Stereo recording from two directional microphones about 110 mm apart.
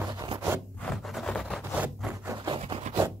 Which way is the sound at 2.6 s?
65° right (ahead or behind).